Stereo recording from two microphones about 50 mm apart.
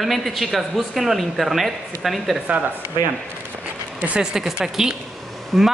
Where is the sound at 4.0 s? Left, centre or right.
Centre.